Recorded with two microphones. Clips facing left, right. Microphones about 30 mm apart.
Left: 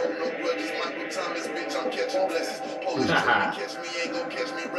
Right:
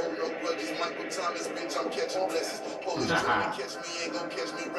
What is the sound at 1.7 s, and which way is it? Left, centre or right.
Music, left.